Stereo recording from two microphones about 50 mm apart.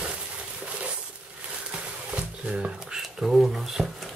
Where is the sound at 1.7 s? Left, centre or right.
Right.